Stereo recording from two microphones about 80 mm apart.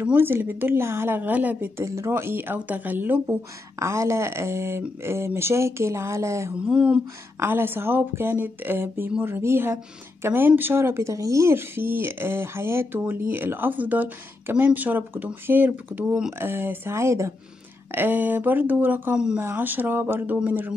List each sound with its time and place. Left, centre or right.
0.2 s speech: right
1.8 s speech: right
3.8 s speech: right
6.5 s a sound: centre
7.3 s speech: right
16.1 s a sound: centre
16.3 s speech: right
17.9 s speech: right
19.1 s a sound: centre
19.5 s speech: right